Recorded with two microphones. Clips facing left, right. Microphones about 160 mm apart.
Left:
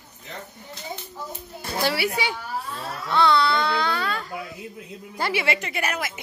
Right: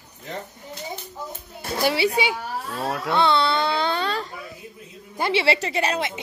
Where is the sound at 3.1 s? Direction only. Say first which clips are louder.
Left 1 dB; 20° right (ahead or behind).